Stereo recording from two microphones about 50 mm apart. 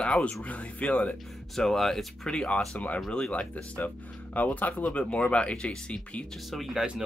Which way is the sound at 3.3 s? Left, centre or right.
Left.